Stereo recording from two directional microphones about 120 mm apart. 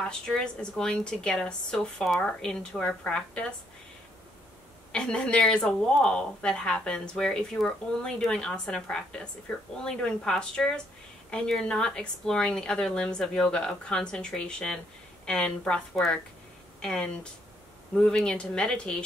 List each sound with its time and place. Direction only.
0.0 s a woman's voice: 5° left (ahead or behind)
4.9 s a woman's voice: 5° left (ahead or behind)